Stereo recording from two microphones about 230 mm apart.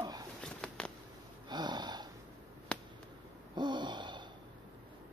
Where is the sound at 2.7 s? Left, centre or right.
Centre.